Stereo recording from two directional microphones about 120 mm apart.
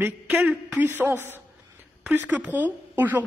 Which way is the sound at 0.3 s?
5° right (ahead or behind).